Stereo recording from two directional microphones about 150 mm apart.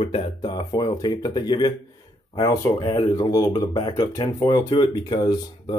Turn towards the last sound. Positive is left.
turn(degrees=25)  # may be behind; listen again after turning